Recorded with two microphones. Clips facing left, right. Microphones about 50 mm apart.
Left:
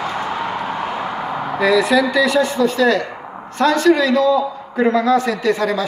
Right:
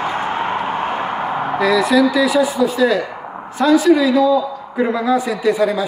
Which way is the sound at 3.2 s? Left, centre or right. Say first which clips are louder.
Right 2 dB; centre.